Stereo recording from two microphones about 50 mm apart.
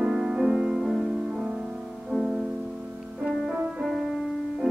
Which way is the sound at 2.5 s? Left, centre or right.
Centre.